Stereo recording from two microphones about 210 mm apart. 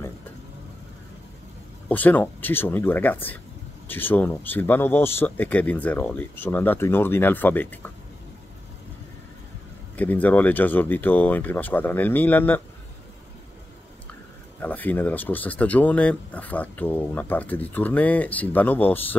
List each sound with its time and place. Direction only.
1.9 s speech: 10° left (ahead or behind)
9.9 s speech: 10° left (ahead or behind)
14.6 s speech: 10° left (ahead or behind)